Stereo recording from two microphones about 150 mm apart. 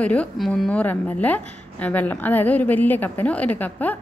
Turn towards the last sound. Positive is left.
turn(degrees=10)  # may be behind; listen again after turning